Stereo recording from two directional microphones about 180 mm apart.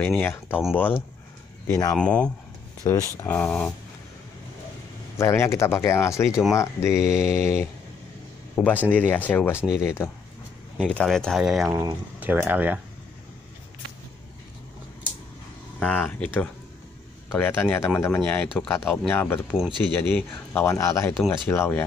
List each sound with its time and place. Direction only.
0.0 s speech: 10° left (ahead or behind)
2.0 s speech: 5° left (ahead or behind)
2.8 s speech: 20° left (ahead or behind)
5.1 s speech: 15° left (ahead or behind)
10.8 s speech: centre (ahead or behind)
11.7 s speech: 20° right (ahead or behind)
12.2 s speech: 10° right (ahead or behind)
15.8 s speech: 10° left (ahead or behind)